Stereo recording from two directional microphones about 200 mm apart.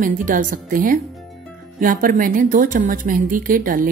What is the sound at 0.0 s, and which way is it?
A woman's voice, 40° right (ahead or behind).